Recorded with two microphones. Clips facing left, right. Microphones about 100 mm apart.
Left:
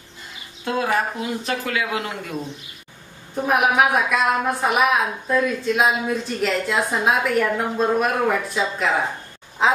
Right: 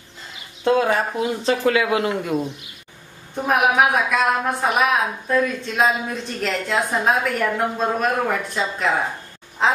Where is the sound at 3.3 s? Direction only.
Centre (ahead or behind).